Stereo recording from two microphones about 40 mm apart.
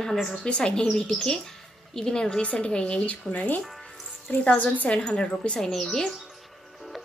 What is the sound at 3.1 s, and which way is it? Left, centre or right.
A woman's voice, left.